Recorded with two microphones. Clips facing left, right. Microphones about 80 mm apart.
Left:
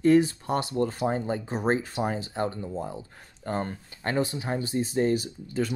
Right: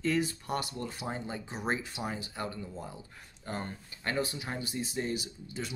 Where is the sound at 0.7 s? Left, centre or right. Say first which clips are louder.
Left 11 dB; left.